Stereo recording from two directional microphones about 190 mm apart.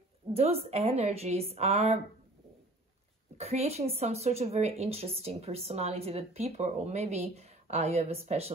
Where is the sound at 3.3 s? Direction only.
35° right (ahead or behind).